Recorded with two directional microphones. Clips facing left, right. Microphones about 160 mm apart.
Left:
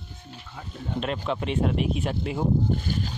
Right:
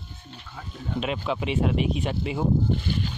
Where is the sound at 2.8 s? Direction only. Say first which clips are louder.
Right 1 dB; 40° left (ahead or behind).